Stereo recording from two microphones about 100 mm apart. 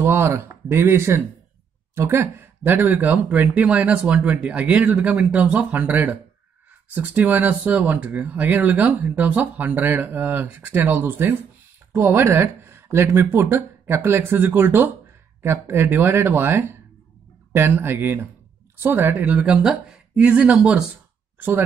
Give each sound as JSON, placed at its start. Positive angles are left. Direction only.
{"t": 0.0, "sound": "speech", "side_deg": -20}
{"t": 21.4, "sound": "speech", "side_deg": -20}